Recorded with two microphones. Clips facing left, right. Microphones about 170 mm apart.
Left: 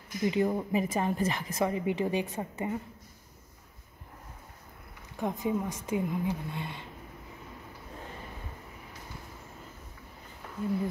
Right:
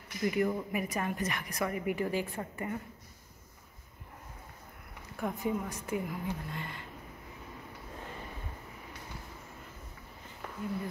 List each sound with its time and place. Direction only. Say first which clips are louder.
0.2 s a woman's voice: left 2 dB; 25° left (ahead or behind)
5.2 s a woman's voice: left 3 dB; 20° left (ahead or behind)